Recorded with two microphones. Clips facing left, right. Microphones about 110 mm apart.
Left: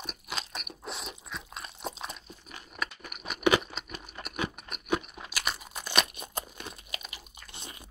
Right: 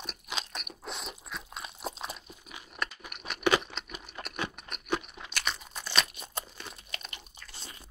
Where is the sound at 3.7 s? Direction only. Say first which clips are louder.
Even; centre (ahead or behind).